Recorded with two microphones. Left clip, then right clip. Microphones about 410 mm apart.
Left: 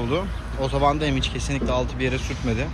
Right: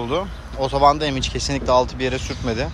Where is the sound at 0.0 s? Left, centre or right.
Centre.